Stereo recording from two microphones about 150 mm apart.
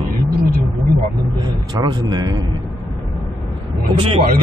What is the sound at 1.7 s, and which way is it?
Speech, 25° right (ahead or behind).